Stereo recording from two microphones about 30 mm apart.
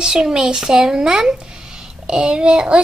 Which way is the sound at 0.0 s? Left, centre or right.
Right.